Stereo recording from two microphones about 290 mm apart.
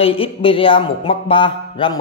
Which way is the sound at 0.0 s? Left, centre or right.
Centre.